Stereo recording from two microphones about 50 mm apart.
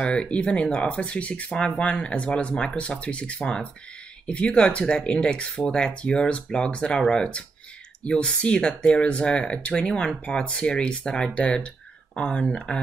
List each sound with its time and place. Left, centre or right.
0.0 s speech: centre